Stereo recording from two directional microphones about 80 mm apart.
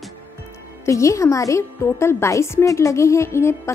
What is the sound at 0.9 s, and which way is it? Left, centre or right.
A woman's voice, left.